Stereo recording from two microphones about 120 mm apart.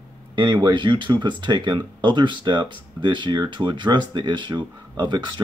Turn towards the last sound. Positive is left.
turn(degrees=-40)  # may be behind; listen again after turning